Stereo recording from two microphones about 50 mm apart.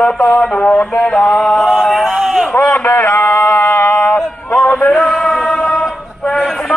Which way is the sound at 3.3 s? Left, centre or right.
Left.